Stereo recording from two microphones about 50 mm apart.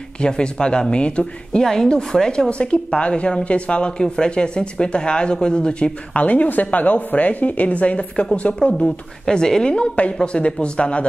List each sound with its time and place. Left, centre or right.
0.2 s speech: centre
8.8 s speech: centre